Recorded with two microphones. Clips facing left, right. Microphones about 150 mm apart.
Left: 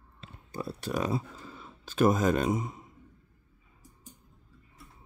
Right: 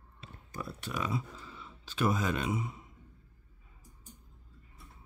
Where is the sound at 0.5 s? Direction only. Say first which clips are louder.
Left 6 dB; 35° left (ahead or behind).